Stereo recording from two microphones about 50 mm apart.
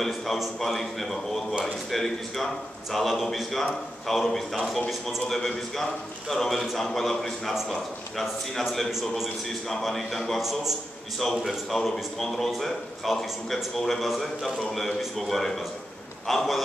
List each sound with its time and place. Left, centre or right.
0.0 s a man's voice: centre